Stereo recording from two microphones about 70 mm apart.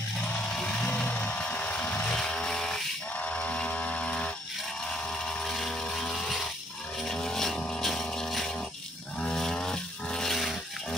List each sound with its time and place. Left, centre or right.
0.6 s music: centre
0.9 s vehicle: left
2.1 s chainsaw: centre
3.2 s electric toothbrush: centre
5.2 s a sound: centre
7.0 s vehicle: centre
9.2 s chainsaw: centre